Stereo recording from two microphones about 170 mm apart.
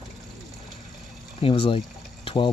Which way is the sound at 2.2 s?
30° left (ahead or behind).